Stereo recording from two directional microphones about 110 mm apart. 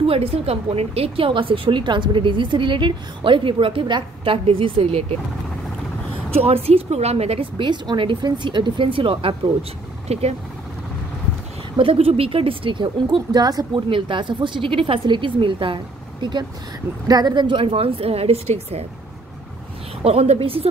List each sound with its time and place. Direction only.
0.0 s a woman's voice: 60° right (ahead or behind)
6.3 s a woman's voice: 65° right (ahead or behind)
11.7 s a woman's voice: 55° right (ahead or behind); by 13.8 s 40° right (ahead or behind)
13.8 s a woman's voice: 50° right (ahead or behind); by 18.9 s 65° right (ahead or behind)
20.0 s a woman's voice: 65° right (ahead or behind)